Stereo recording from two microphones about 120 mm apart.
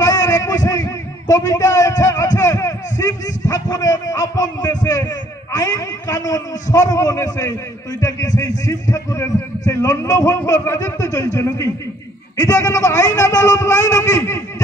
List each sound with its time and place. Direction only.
0.0 s a man's voice: 30° left (ahead or behind)